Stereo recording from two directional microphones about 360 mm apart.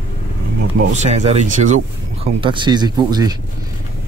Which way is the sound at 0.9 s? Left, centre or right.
Centre.